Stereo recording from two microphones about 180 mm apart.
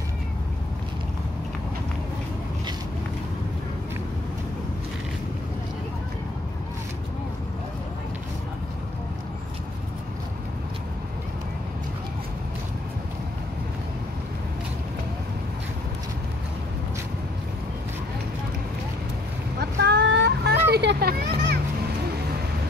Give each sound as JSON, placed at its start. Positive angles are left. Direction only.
{"t": 19.6, "sound": "vehicle", "side_deg": -65}
{"t": 20.7, "sound": "children playing", "side_deg": -65}